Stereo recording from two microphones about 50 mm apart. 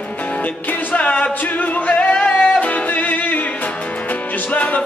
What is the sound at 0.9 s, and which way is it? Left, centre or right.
Music, left.